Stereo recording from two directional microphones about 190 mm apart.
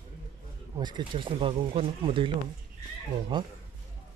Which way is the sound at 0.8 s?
25° right (ahead or behind).